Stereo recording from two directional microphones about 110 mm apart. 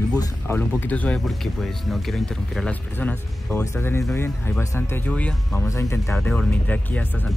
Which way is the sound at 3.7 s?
25° left (ahead or behind).